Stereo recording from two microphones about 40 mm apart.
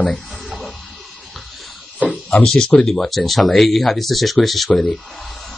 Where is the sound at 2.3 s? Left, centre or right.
Centre.